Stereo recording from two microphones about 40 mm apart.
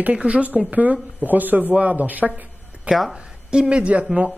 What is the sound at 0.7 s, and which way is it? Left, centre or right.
Speech, right.